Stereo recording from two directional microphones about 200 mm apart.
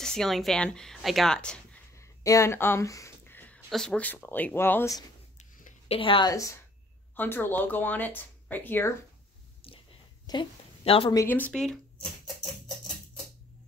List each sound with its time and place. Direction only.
0.0 s speech: centre (ahead or behind)
5.4 s a sound: 35° left (ahead or behind); by 6.6 s 15° left (ahead or behind)
7.2 s speech: 10° left (ahead or behind)
9.6 s whispering: 30° left (ahead or behind)
10.2 s a woman's voice: 25° left (ahead or behind)
11.1 s speech: 10° left (ahead or behind)